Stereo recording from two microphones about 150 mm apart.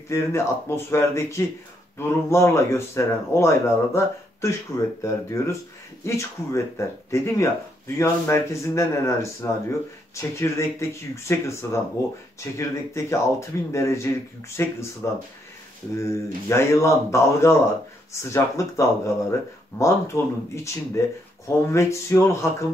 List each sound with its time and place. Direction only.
0.1 s speech: 15° left (ahead or behind)
16.4 s speech: 15° left (ahead or behind)
20.1 s speech: 20° left (ahead or behind)